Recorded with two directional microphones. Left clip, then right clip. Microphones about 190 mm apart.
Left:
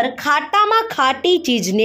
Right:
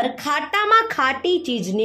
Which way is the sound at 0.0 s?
15° left (ahead or behind).